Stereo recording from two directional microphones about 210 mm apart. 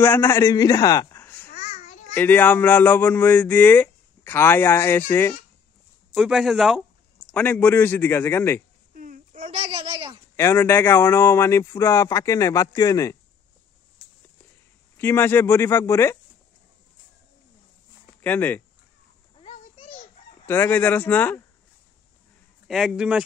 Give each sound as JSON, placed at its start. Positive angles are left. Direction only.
{"t": 0.0, "sound": "a man's voice", "side_deg": 10}
{"t": 1.5, "sound": "babbling", "side_deg": 35}
{"t": 2.1, "sound": "speech", "side_deg": 10}
{"t": 6.1, "sound": "speech", "side_deg": 0}
{"t": 8.9, "sound": "a sound", "side_deg": -40}
{"t": 10.3, "sound": "speech", "side_deg": 10}
{"t": 15.0, "sound": "speech", "side_deg": 10}
{"t": 18.2, "sound": "speech", "side_deg": 10}
{"t": 19.4, "sound": "children playing", "side_deg": 30}
{"t": 20.4, "sound": "speech", "side_deg": 10}
{"t": 22.7, "sound": "speech", "side_deg": 0}